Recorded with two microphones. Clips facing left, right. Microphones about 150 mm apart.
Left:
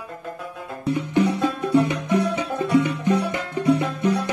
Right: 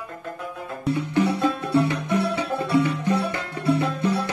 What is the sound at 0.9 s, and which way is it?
Music, 15° left (ahead or behind).